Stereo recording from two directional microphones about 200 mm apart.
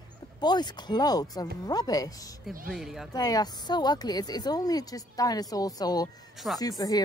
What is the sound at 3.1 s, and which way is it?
A woman's voice, 20° left (ahead or behind).